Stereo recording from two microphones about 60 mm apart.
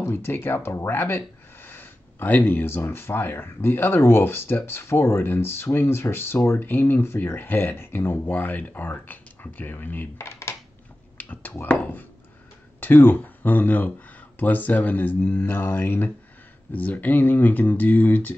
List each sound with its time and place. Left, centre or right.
0.0 s speech: left
11.1 s a sound: left
11.6 s speech: left